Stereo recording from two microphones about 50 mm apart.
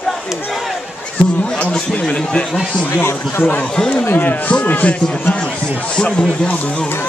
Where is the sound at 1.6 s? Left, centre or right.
Centre.